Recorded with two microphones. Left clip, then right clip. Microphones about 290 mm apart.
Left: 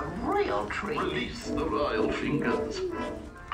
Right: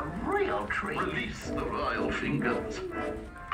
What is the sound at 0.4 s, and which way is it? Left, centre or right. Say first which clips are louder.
Speech: even; centre.